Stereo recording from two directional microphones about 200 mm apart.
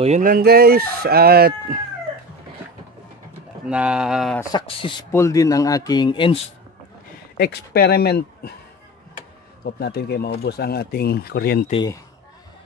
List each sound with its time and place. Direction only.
0.0 s chicken: 40° right (ahead or behind)
3.6 s speech: 5° right (ahead or behind)
4.4 s speech: 20° left (ahead or behind)
5.1 s speech: 15° left (ahead or behind)
7.3 s speech: 55° left (ahead or behind)
9.7 s speech: 55° left (ahead or behind)
11.7 s speech: 20° left (ahead or behind)